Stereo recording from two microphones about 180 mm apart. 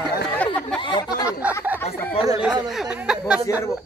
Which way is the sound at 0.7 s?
25° left (ahead or behind).